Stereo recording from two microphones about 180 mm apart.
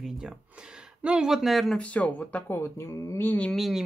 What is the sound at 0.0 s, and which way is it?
Speech, 5° right (ahead or behind).